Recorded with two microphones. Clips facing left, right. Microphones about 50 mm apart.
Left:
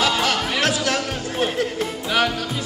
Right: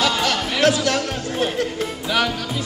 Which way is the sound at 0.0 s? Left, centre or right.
Centre.